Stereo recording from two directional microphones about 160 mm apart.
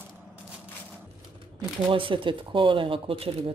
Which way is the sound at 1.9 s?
35° right (ahead or behind).